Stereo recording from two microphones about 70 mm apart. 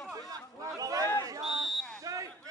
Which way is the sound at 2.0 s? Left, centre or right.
Right.